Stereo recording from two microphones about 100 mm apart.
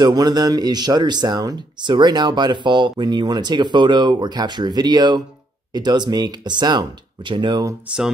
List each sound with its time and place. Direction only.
0.0 s speech: 40° right (ahead or behind)